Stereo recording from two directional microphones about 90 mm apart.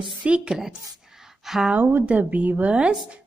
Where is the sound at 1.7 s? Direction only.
20° right (ahead or behind).